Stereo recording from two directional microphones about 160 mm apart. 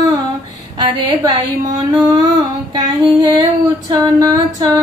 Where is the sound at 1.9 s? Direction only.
20° right (ahead or behind).